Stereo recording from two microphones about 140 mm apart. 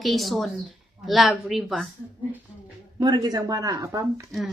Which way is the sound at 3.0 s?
30° right (ahead or behind).